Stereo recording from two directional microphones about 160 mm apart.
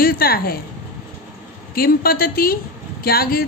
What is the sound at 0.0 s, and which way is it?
Speech, 65° left (ahead or behind).